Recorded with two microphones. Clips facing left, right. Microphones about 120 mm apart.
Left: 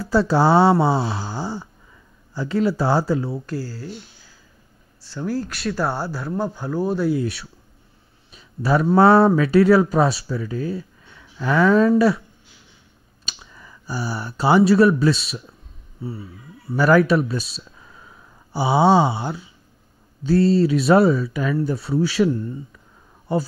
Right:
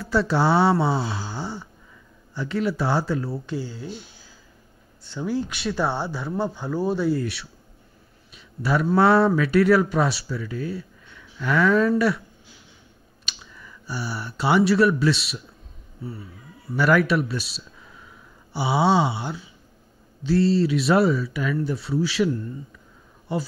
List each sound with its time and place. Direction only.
0.0 s speech: 35° left (ahead or behind)
3.4 s speech: 5° left (ahead or behind)
5.0 s speech: 5° left (ahead or behind)
8.4 s a sound: 40° left (ahead or behind)
8.8 s speech: 35° left (ahead or behind)
13.2 s speech: 40° left (ahead or behind)
16.7 s speech: 35° left (ahead or behind)
20.2 s speech: 45° left (ahead or behind)
20.8 s speech: 30° left (ahead or behind)
22.1 s speech: 30° left (ahead or behind)